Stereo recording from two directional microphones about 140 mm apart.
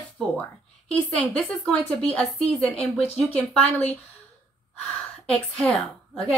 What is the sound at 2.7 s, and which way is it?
Speech, 45° left (ahead or behind).